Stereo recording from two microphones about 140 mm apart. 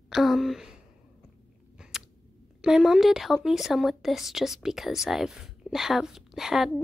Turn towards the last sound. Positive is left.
turn(degrees=0)  # may be behind; listen again after turning